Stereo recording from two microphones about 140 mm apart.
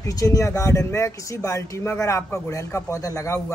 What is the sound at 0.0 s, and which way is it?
Speech, 25° left (ahead or behind).